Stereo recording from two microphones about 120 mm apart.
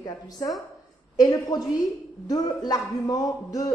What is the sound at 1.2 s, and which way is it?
A man's voice, 30° left (ahead or behind).